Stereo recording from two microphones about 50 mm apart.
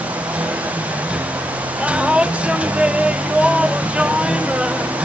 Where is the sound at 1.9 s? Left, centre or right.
Right.